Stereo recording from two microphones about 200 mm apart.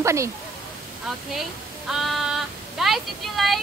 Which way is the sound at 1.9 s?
Centre (ahead or behind).